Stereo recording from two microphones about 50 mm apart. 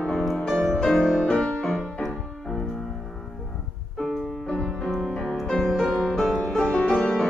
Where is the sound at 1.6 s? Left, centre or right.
Centre.